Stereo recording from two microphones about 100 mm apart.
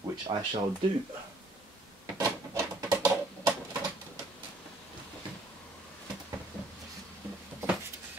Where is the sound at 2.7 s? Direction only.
35° right (ahead or behind).